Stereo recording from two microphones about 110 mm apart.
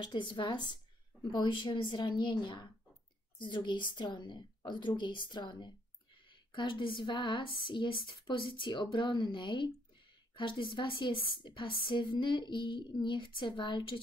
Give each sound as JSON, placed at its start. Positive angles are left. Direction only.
{"t": 0.0, "sound": "a woman's voice", "side_deg": 45}